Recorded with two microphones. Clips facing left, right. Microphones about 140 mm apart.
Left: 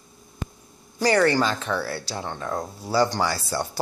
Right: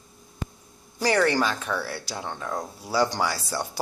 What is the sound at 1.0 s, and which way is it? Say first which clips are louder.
Speech: left 2 dB; 5° right (ahead or behind).